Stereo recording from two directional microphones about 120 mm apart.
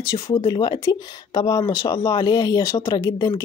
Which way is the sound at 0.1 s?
40° left (ahead or behind).